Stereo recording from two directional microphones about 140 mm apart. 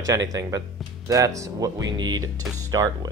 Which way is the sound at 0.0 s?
25° right (ahead or behind).